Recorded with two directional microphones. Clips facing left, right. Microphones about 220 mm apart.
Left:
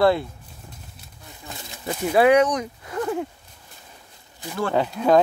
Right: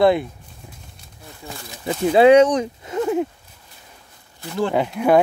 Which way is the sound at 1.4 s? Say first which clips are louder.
Right 4 dB; 20° right (ahead or behind).